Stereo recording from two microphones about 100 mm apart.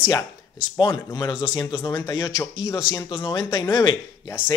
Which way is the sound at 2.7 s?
45° left (ahead or behind).